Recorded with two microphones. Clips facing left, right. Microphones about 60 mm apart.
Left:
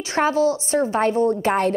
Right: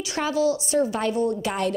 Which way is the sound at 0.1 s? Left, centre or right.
Left.